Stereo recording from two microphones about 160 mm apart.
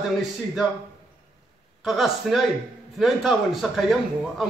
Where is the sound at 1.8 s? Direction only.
Centre (ahead or behind).